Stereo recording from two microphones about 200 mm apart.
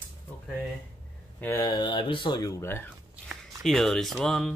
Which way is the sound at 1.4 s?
15° left (ahead or behind).